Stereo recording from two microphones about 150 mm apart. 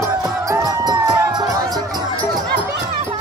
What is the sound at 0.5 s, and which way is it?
Music, 20° right (ahead or behind).